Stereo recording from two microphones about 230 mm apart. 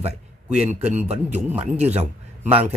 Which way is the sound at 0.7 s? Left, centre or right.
Right.